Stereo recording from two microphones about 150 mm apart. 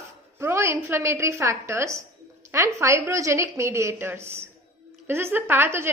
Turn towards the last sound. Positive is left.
turn(degrees=-15)  # may be behind; listen again after turning